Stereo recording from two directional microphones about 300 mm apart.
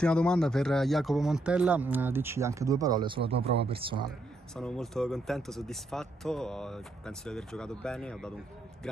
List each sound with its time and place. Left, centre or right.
0.0 s speech: centre
4.6 s speech: centre